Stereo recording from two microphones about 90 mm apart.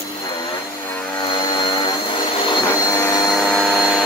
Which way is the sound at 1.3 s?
60° left (ahead or behind).